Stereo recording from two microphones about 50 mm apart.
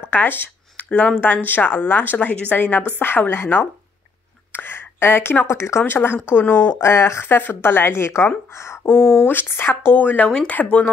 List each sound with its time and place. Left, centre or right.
0.0 s a sound: left
0.8 s speech: left
1.2 s a woman's voice: left
2.1 s speech: left
2.5 s a woman's voice: left
5.9 s speech: left
6.8 s speech: left
7.9 s a woman's voice: left
9.2 s speech: left
9.9 s a woman's voice: left